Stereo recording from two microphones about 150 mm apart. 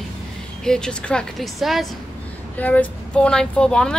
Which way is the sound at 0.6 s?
5° left (ahead or behind).